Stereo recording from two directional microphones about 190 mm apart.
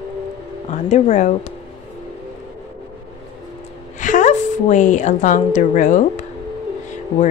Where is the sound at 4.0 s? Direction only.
40° left (ahead or behind).